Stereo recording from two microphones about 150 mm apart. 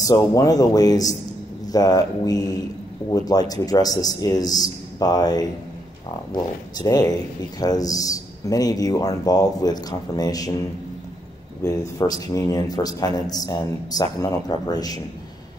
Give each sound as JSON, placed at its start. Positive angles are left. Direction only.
{"t": 0.0, "sound": "a man's voice", "side_deg": 25}
{"t": 6.8, "sound": "a man's voice", "side_deg": 25}